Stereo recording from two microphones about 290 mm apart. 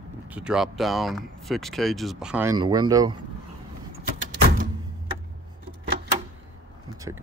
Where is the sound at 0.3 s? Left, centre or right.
Centre.